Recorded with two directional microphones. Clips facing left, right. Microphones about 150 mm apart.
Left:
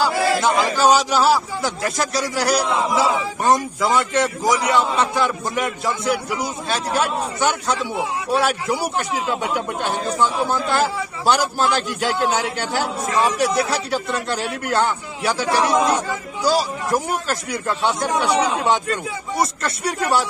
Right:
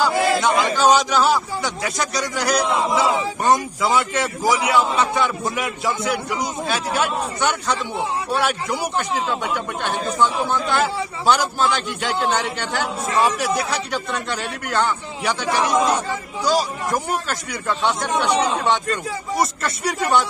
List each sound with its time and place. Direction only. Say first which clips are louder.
0.1 s a sound: right 1 dB; 20° right (ahead or behind)
0.4 s a man's voice: even; 5° left (ahead or behind)
19.3 s a man's voice: even; centre (ahead or behind)